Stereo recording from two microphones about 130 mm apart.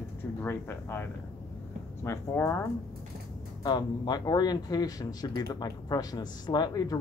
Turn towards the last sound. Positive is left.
turn(degrees=30)  # may be behind; listen again after turning